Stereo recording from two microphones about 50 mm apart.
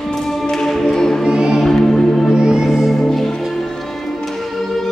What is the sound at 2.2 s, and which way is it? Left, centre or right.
Music, centre.